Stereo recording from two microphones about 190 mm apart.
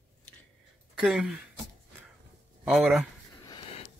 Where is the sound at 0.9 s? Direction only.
5° right (ahead or behind).